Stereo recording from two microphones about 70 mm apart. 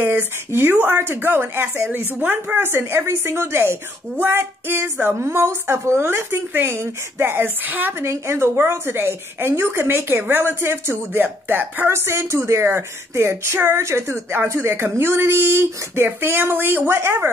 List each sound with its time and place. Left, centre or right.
0.0 s speech: right
1.9 s speech: right
8.0 s speech: right